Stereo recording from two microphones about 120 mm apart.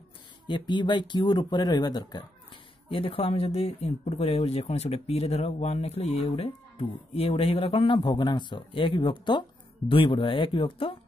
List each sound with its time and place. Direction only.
0.5 s speech: 40° left (ahead or behind)
2.9 s speech: 50° left (ahead or behind)